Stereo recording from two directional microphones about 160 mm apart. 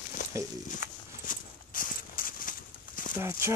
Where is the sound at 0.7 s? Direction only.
60° left (ahead or behind).